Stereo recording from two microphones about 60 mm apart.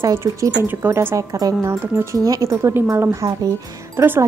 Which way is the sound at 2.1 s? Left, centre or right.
Right.